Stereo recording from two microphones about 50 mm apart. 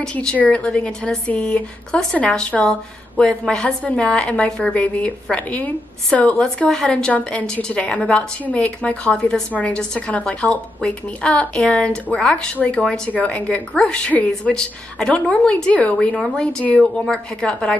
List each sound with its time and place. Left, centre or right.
0.4 s a woman's voice: left
4.7 s a woman's voice: left
6.7 s a woman's voice: centre
12.5 s speech: left
12.8 s a woman's voice: centre
13.1 s a woman's voice: left
14.5 s a woman's voice: centre
16.7 s a woman's voice: centre